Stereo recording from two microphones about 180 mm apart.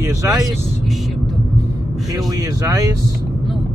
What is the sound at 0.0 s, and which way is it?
Speech, 15° right (ahead or behind).